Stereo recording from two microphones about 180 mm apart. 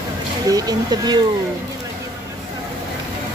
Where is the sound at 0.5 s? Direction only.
20° right (ahead or behind).